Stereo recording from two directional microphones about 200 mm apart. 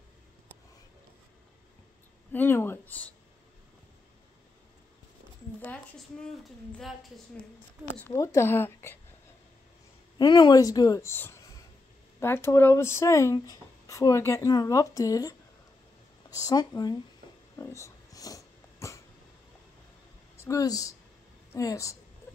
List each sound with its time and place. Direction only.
2.3 s speech: 10° left (ahead or behind)
6.2 s speech: centre (ahead or behind)
8.0 s speech: 15° left (ahead or behind)
10.1 s speech: 20° left (ahead or behind)
17.6 s dog: 15° left (ahead or behind)
20.4 s speech: 15° left (ahead or behind)